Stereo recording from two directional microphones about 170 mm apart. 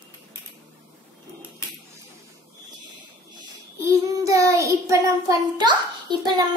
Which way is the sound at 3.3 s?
15° right (ahead or behind).